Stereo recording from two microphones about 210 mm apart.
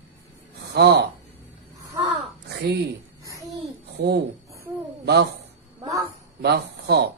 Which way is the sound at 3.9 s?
50° right (ahead or behind).